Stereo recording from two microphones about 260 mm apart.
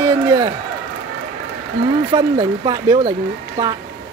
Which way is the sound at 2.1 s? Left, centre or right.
Centre.